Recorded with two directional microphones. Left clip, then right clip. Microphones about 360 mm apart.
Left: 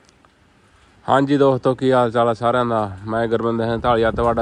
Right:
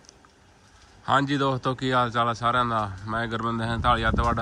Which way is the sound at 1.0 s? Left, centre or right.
Centre.